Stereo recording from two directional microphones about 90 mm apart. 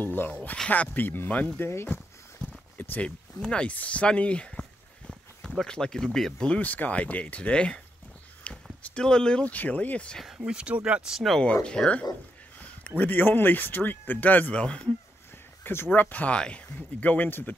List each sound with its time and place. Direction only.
0.0 s speech: 25° left (ahead or behind)
3.3 s a sound: 10° left (ahead or behind)
5.6 s speech: 10° left (ahead or behind)
8.5 s a sound: 15° left (ahead or behind)
8.8 s speech: 10° left (ahead or behind)
10.2 s speech: 5° right (ahead or behind)
11.6 s speech: 10° left (ahead or behind)
15.6 s speech: 25° left (ahead or behind)